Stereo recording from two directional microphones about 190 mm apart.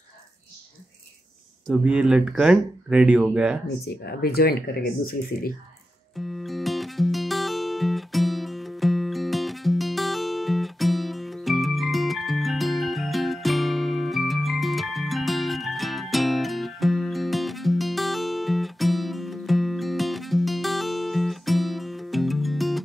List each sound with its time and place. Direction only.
1.7 s speech: 5° right (ahead or behind)
3.8 s speech: 55° left (ahead or behind)
6.1 s music: centre (ahead or behind)